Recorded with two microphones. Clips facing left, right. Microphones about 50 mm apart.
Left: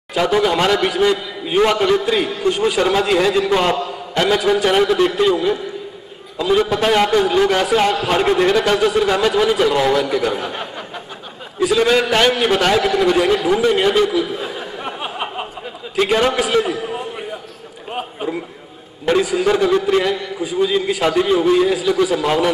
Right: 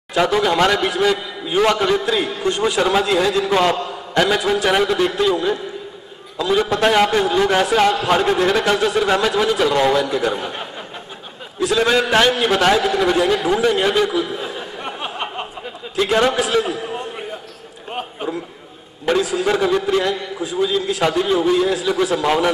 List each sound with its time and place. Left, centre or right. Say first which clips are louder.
0.1 s a man's voice: left 1 dB; centre
3.2 s a man's voice: left 2 dB; centre
3.4 s a man's voice: even; centre
11.7 s a man's voice: even; centre
13.3 s a sound: left 2 dB; centre
16.1 s a man's voice: even; centre
18.2 s a man's voice: left 1 dB; centre